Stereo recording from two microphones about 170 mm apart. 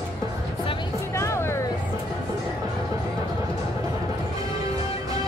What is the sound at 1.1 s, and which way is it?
Music, 15° left (ahead or behind).